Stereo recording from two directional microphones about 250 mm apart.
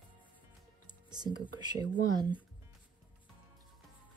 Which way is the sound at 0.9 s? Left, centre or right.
Centre.